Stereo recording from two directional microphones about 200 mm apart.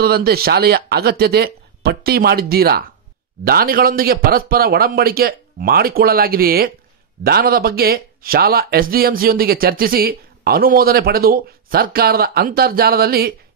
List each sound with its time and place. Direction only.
0.0 s speech: 50° right (ahead or behind)